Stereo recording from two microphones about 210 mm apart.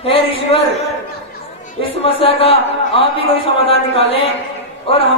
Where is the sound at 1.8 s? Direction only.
25° left (ahead or behind).